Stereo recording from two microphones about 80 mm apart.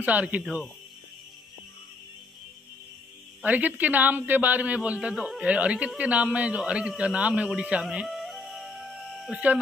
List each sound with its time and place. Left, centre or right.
0.0 s a man's voice: centre
3.4 s a man's voice: right
5.1 s speech: centre
5.4 s speech: centre
7.0 s music: centre
9.3 s speech: centre